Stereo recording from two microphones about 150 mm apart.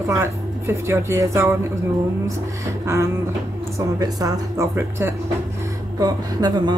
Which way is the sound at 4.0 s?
25° right (ahead or behind).